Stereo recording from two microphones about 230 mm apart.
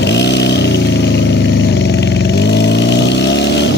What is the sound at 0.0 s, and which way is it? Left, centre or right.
Vehicle, left.